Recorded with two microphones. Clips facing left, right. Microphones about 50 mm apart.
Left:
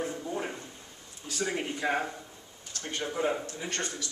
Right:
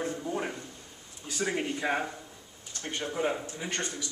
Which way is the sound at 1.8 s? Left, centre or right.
Centre.